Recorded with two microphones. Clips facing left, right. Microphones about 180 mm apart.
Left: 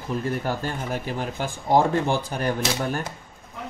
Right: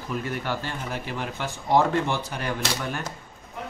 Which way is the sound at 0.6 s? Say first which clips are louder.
Left 4 dB; 45° left (ahead or behind).